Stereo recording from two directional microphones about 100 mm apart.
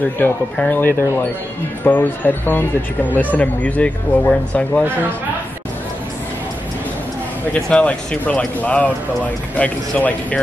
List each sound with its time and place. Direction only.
0.2 s speech: 15° left (ahead or behind)
7.7 s speech: 10° left (ahead or behind)